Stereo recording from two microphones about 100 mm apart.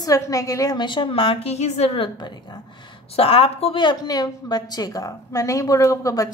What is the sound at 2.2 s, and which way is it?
Speech, 50° left (ahead or behind).